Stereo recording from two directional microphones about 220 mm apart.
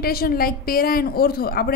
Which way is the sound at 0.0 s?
45° left (ahead or behind).